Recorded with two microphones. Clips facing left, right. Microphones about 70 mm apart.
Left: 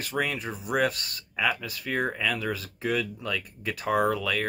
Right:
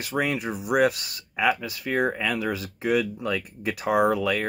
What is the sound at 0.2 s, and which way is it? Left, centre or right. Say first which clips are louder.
Speech: right 4 dB; centre.